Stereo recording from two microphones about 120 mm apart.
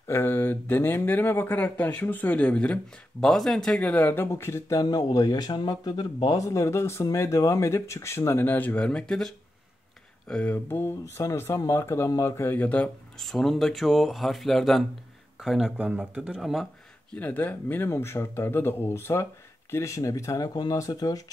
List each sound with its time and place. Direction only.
0.1 s speech: 15° left (ahead or behind); by 16.6 s 5° right (ahead or behind)
17.1 s speech: 15° left (ahead or behind); by 21.2 s 30° left (ahead or behind)